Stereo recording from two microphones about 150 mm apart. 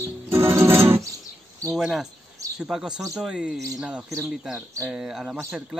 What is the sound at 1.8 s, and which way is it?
Speech, centre (ahead or behind).